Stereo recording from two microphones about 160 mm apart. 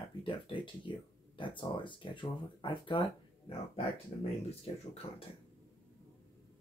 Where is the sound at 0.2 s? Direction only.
30° left (ahead or behind).